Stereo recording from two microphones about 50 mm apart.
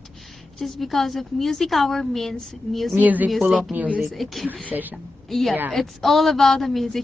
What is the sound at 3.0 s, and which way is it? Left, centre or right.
Speech, right.